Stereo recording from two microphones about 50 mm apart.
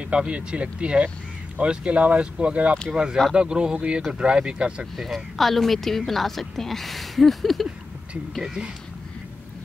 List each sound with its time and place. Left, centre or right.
0.0 s speech: right
2.9 s speech: centre
4.9 s speech: centre
8.1 s speech: centre